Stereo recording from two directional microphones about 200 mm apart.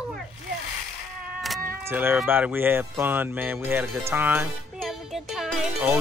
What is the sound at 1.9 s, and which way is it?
Speech, 10° right (ahead or behind).